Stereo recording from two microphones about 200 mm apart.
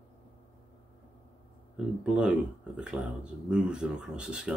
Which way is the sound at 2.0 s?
5° right (ahead or behind).